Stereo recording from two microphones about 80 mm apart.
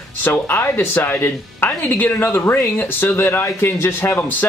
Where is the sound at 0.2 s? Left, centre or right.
Left.